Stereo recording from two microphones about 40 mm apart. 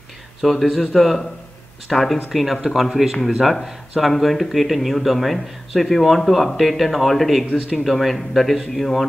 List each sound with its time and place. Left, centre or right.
0.4 s speech: centre